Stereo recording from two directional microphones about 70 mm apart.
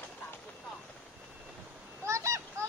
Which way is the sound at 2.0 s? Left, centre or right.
Right.